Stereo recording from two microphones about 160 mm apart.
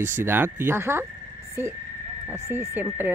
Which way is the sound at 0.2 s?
15° right (ahead or behind).